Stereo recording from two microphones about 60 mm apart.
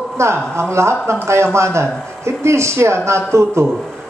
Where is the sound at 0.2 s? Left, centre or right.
Right.